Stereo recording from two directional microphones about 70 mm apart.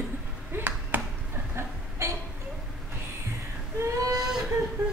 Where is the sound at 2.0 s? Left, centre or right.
Right.